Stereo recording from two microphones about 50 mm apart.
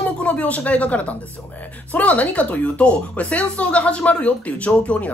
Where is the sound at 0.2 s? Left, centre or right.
Left.